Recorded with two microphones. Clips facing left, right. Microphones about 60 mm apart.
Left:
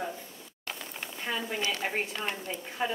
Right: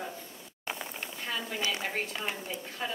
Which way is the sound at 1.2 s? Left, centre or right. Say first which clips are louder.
Left 3 dB; centre.